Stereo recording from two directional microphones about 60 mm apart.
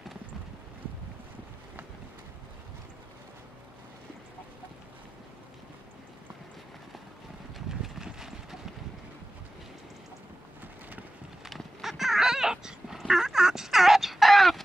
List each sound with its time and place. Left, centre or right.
7.5 s clip-clop: centre
11.4 s dog: centre